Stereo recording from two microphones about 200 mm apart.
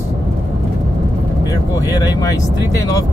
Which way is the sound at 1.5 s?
20° left (ahead or behind).